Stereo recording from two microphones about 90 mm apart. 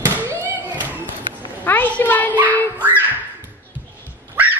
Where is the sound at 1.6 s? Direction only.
20° left (ahead or behind).